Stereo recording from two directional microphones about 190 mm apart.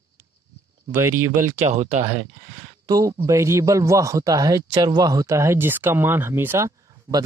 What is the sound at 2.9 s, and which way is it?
A man's voice, 20° right (ahead or behind).